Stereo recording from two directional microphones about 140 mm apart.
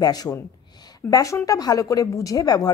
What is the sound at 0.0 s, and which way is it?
A woman's voice, 25° left (ahead or behind).